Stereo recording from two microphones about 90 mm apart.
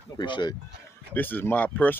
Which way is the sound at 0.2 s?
55° left (ahead or behind).